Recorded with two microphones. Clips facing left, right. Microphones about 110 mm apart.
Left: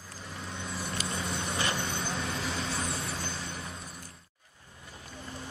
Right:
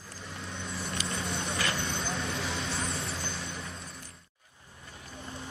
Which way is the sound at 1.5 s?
25° left (ahead or behind).